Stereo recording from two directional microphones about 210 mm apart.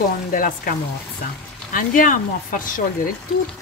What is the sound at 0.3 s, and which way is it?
Speech, 40° left (ahead or behind).